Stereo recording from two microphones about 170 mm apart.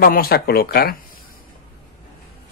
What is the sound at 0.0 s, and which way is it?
Speech, 60° left (ahead or behind).